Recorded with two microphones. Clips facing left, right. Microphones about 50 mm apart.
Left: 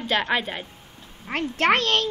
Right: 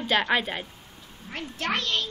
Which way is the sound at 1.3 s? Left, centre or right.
Left.